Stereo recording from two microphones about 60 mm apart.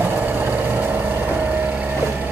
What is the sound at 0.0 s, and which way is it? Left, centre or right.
Vehicle, right.